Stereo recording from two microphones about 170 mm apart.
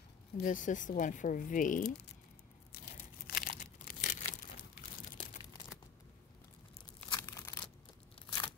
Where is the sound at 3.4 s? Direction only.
55° left (ahead or behind).